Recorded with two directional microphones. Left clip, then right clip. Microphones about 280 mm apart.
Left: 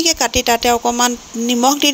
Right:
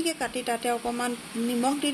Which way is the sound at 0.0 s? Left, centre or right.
Left.